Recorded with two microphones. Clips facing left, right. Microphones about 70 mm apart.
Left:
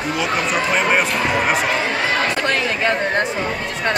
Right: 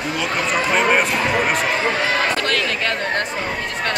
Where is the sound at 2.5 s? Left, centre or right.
Left.